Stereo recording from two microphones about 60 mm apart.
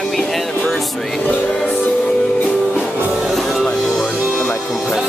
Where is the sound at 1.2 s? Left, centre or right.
Left.